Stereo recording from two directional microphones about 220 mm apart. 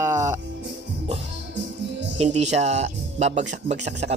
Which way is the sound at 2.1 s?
30° right (ahead or behind).